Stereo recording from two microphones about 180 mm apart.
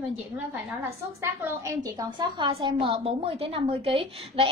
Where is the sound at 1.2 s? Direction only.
15° right (ahead or behind).